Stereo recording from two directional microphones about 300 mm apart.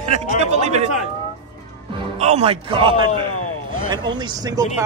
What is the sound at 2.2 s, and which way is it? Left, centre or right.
Speech, right.